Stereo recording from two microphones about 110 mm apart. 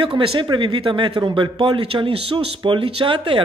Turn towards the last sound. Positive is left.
turn(degrees=-50)  # may be behind; listen again after turning